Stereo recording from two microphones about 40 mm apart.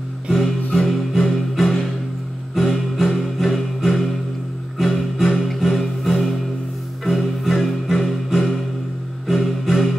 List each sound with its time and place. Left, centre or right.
0.7 s music: centre